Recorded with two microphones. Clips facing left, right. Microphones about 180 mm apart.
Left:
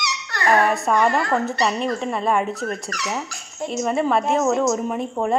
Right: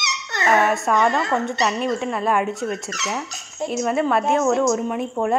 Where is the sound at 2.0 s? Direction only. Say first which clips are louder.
Even; centre (ahead or behind).